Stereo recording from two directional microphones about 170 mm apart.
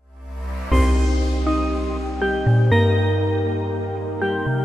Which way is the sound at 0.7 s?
Centre (ahead or behind).